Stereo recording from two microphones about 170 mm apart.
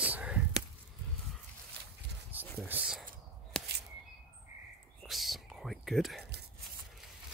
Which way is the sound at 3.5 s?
5° left (ahead or behind).